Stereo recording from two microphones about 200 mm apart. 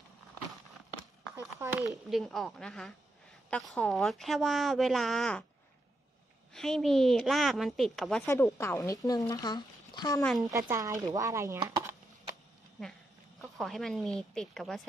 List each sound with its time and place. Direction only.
1.6 s chopping: 10° right (ahead or behind)
1.9 s a woman's voice: centre (ahead or behind)
6.5 s a woman's voice: centre (ahead or behind)
8.3 s a woman's voice: 15° left (ahead or behind)
10.5 s chopping: 15° right (ahead or behind)
13.4 s speech: centre (ahead or behind)